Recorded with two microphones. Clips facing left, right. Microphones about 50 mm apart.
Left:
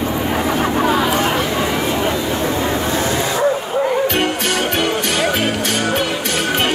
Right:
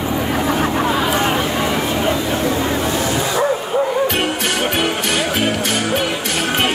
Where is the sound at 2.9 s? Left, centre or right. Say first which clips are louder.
Left 1 dB; left.